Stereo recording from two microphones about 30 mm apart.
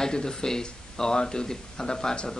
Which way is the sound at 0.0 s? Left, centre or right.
Left.